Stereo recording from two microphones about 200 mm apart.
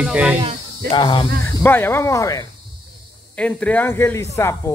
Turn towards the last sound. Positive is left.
turn(degrees=15)  # may be behind; listen again after turning